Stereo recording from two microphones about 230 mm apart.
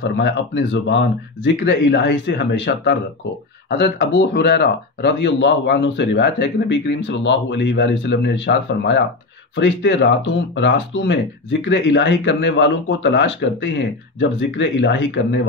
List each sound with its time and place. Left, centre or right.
0.0 s speech: left